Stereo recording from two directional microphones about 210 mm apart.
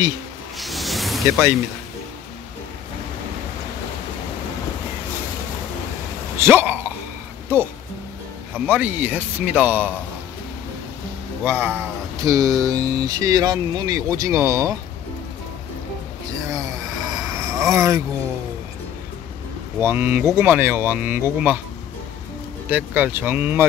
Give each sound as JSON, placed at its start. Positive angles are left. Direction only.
{"t": 0.6, "sound": "a sound", "side_deg": 0}
{"t": 6.3, "sound": "speech", "side_deg": -10}
{"t": 8.5, "sound": "speech", "side_deg": -10}
{"t": 11.4, "sound": "speech", "side_deg": -10}
{"t": 16.5, "sound": "a sound", "side_deg": -15}
{"t": 19.8, "sound": "speech", "side_deg": -10}
{"t": 22.7, "sound": "speech", "side_deg": -10}